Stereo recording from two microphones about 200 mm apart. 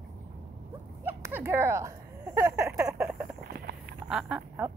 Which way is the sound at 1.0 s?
15° right (ahead or behind).